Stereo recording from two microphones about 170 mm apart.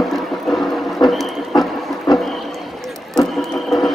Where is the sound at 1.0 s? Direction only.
25° left (ahead or behind).